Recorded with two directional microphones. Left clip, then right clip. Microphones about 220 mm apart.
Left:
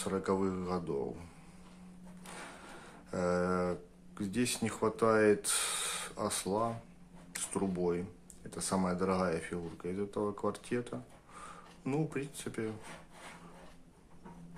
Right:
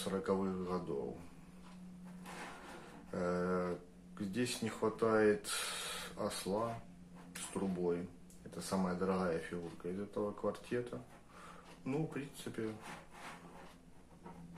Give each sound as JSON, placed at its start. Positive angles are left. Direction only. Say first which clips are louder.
{"t": 0.0, "sound": "speech", "louder": "left 4 dB", "side_deg": 35}
{"t": 3.1, "sound": "speech", "louder": "left 5 dB", "side_deg": 30}